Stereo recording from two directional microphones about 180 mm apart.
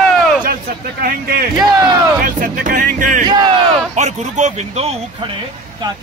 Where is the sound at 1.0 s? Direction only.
55° right (ahead or behind); by 5.0 s 35° right (ahead or behind).